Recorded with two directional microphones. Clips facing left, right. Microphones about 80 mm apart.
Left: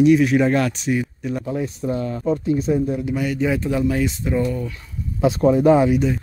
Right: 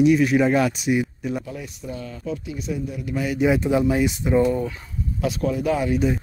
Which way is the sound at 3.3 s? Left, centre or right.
Centre.